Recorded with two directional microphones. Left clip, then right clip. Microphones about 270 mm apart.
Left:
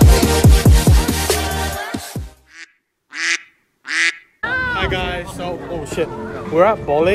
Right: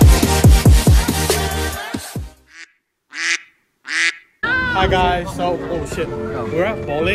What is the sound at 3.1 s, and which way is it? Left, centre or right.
Quack, centre.